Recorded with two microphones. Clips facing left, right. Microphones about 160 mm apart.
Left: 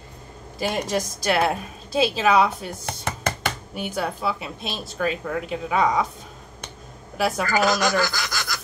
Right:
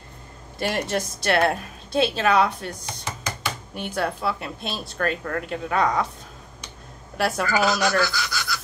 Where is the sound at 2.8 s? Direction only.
55° left (ahead or behind).